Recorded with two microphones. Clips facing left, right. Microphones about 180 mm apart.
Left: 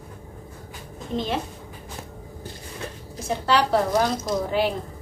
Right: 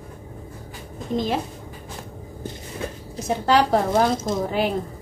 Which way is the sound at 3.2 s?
45° right (ahead or behind).